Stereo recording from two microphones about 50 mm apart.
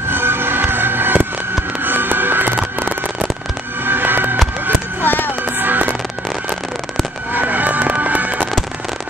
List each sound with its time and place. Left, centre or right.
0.1 s fireworks: right
1.9 s a sound: right
3.8 s music: right
5.0 s music: left
5.4 s music: right
7.3 s music: right